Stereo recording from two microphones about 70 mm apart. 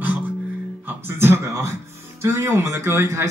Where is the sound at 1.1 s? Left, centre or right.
Right.